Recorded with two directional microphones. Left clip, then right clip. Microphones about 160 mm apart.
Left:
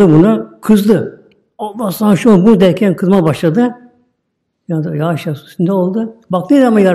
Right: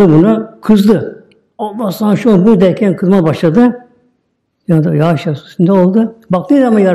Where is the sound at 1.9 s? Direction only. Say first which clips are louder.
Left 1 dB; 10° left (ahead or behind).